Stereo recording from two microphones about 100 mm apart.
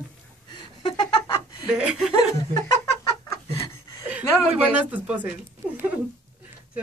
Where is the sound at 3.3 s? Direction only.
35° left (ahead or behind).